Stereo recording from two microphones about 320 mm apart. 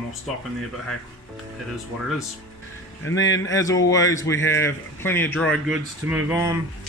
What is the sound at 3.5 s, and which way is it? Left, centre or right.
A man's voice, centre.